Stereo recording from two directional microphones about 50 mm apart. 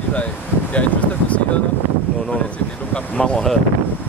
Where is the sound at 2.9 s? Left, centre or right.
Left.